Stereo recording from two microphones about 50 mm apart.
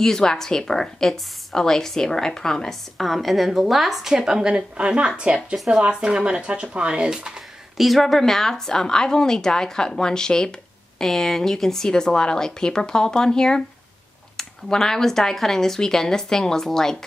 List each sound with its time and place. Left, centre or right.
0.0 s a woman's voice: centre
7.7 s a woman's voice: centre